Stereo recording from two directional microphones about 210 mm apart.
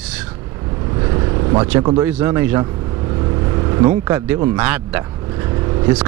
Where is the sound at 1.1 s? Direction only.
25° right (ahead or behind).